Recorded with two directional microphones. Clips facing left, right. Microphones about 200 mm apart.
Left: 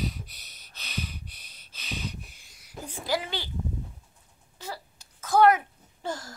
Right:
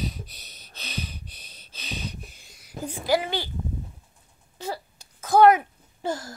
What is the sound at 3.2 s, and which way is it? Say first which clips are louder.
Speech: right 6 dB; 50° right (ahead or behind).